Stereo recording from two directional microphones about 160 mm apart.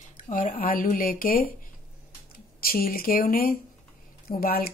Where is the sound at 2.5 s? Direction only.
65° left (ahead or behind).